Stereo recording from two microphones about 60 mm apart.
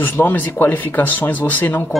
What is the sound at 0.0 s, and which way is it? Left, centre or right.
Speech, left.